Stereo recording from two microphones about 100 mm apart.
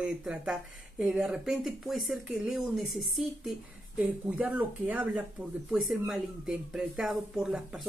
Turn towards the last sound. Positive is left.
turn(degrees=-5)  # may be behind; listen again after turning